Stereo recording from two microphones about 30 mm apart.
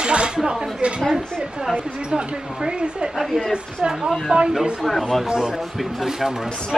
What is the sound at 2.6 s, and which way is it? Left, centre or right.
Speech, right.